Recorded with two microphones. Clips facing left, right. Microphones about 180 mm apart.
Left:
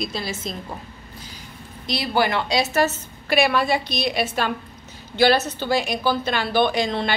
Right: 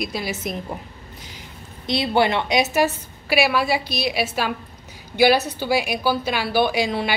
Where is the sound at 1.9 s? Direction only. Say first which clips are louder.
Right 3 dB; 25° right (ahead or behind).